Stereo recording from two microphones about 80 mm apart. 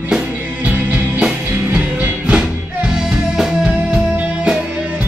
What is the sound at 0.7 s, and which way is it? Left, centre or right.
Music, right.